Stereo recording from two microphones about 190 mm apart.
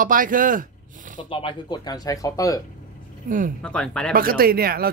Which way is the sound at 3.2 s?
45° right (ahead or behind).